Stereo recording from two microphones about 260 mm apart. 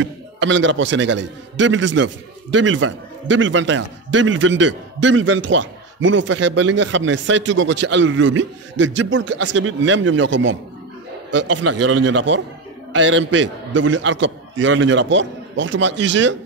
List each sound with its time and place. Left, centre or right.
0.0 s a man's voice: right
11.7 s speech: right
12.0 s a man's voice: right